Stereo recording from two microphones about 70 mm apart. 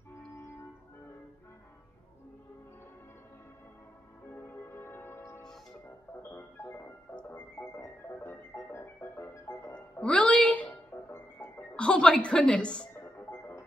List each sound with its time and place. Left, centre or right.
4.3 s music: left
9.7 s music: centre
11.1 s music: left
11.7 s a woman's voice: centre
12.9 s music: left